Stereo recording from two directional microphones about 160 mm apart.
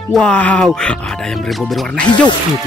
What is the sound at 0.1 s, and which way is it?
Speech, 5° left (ahead or behind).